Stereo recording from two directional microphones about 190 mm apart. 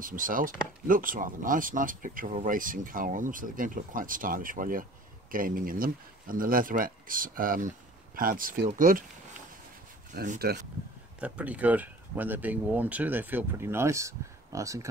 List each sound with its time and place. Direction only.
0.0 s speech: 45° right (ahead or behind)
10.1 s speech: 45° right (ahead or behind)
11.1 s speech: 5° right (ahead or behind)